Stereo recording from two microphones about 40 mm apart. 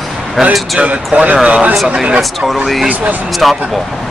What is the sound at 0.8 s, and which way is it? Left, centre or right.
Speech, right.